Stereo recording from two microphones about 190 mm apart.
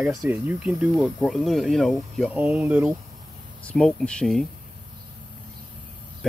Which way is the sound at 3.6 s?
5° left (ahead or behind).